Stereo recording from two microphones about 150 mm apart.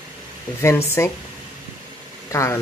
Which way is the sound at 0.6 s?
15° left (ahead or behind).